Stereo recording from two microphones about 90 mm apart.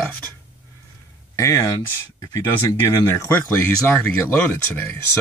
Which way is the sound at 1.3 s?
35° left (ahead or behind).